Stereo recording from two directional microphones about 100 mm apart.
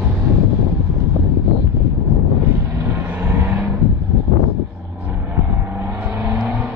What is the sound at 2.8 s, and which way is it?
Vehicle, 20° right (ahead or behind).